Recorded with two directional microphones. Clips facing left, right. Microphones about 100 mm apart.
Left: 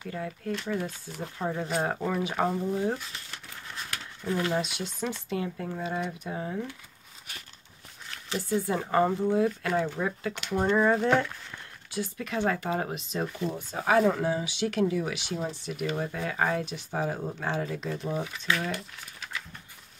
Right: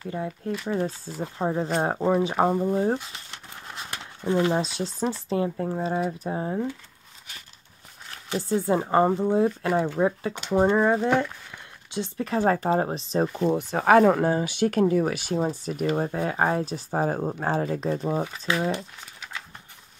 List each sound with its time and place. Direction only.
0.1 s speech: 25° right (ahead or behind)
8.4 s speech: 30° right (ahead or behind)
11.1 s speech: 5° right (ahead or behind)
11.9 s speech: 25° right (ahead or behind)
12.3 s speech: 40° right (ahead or behind)
13.4 s speech: 75° right (ahead or behind); by 18.5 s 40° right (ahead or behind)
18.5 s speech: 25° right (ahead or behind)